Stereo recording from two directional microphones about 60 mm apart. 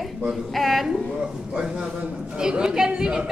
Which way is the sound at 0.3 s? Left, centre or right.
Centre.